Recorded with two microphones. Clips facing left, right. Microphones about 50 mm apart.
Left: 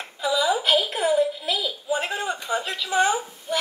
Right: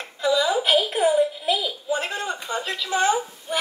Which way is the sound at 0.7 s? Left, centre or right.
Centre.